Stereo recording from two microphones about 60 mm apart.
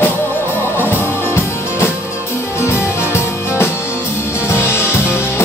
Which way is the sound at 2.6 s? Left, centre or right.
Left.